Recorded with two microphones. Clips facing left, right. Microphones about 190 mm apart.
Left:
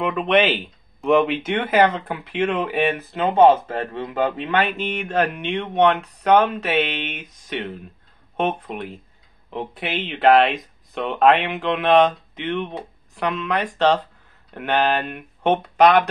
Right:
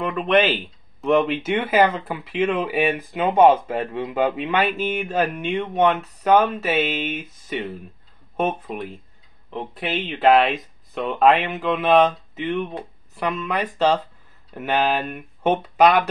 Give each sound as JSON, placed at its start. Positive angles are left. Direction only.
{"t": 0.0, "sound": "speech", "side_deg": 0}